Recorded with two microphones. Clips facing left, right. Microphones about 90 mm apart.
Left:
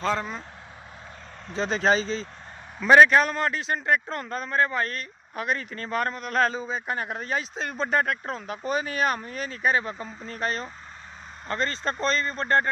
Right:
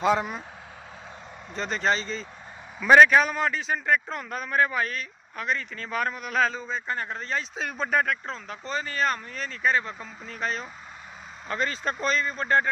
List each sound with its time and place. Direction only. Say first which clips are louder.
0.0 s speech: right 3 dB; 10° right (ahead or behind)
1.5 s a man's voice: left 3 dB; centre (ahead or behind)
5.9 s a man's voice: left 1 dB; centre (ahead or behind)
7.5 s a man's voice: even; 5° right (ahead or behind)
8.0 s a man's voice: left 1 dB; 10° left (ahead or behind)